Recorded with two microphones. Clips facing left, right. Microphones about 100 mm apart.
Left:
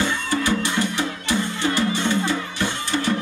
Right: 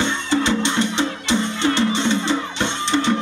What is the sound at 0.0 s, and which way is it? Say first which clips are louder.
Music: right 3 dB; 25° right (ahead or behind).